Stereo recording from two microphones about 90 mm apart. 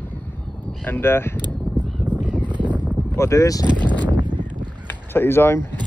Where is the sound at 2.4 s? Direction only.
60° right (ahead or behind).